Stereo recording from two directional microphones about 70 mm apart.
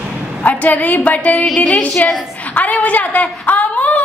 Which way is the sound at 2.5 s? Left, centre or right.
Left.